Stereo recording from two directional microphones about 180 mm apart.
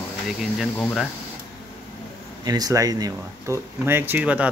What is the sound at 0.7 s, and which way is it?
Speech, 10° left (ahead or behind).